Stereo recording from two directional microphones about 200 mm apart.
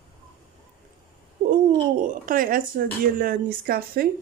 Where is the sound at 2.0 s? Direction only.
45° right (ahead or behind).